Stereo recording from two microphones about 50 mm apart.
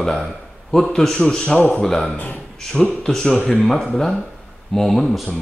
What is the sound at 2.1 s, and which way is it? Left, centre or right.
Speech, left.